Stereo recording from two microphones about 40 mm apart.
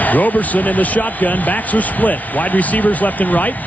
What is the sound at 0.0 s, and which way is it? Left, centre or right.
Speech, left.